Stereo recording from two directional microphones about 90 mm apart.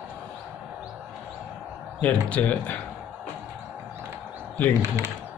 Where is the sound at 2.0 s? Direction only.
15° left (ahead or behind).